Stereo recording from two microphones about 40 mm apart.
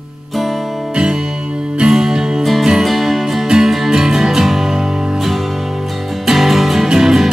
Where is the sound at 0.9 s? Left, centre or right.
Centre.